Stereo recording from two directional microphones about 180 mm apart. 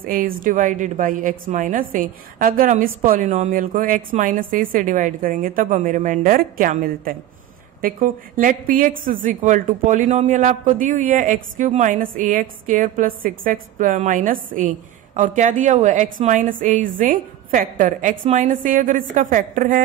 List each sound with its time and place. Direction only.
0.0 s a woman's voice: 50° right (ahead or behind)